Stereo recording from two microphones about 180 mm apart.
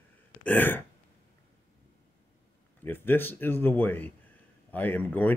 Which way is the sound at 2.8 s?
10° left (ahead or behind).